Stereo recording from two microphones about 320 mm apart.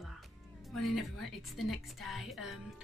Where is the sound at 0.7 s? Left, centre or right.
Centre.